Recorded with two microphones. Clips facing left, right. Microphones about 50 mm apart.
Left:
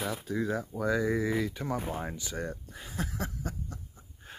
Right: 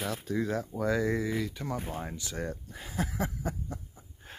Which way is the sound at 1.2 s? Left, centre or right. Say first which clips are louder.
Left 2 dB; centre.